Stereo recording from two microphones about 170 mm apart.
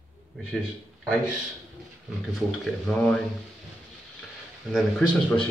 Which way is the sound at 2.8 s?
5° left (ahead or behind).